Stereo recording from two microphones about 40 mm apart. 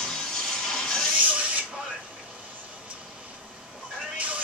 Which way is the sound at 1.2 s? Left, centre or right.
Right.